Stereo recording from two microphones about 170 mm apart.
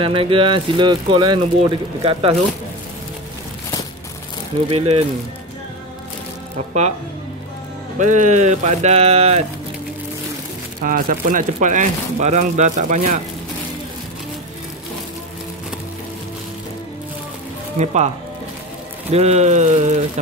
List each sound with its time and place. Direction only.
0.0 s speech: 30° right (ahead or behind)
4.6 s speech: 35° right (ahead or behind)
8.0 s speech: 45° right (ahead or behind)
10.8 s speech: 55° right (ahead or behind)
17.7 s speech: 40° right (ahead or behind)